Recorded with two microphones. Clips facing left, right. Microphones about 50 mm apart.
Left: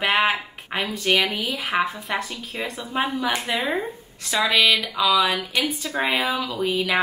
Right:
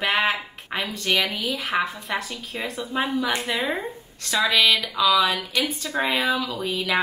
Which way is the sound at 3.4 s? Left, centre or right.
Centre.